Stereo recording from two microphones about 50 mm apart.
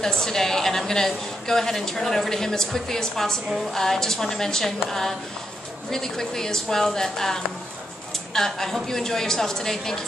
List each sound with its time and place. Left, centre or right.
0.0 s a woman's voice: centre